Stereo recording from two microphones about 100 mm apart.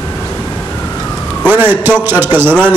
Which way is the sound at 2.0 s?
20° right (ahead or behind).